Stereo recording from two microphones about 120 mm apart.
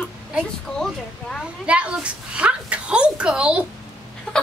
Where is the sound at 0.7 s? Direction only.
5° left (ahead or behind).